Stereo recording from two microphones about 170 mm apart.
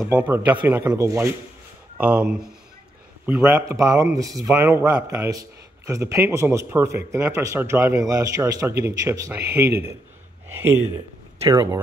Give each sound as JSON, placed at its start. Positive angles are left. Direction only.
{"t": 0.1, "sound": "speech", "side_deg": -10}
{"t": 11.4, "sound": "speech", "side_deg": -15}